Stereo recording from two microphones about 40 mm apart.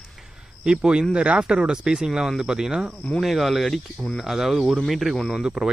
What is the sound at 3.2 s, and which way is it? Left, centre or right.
Speech, centre.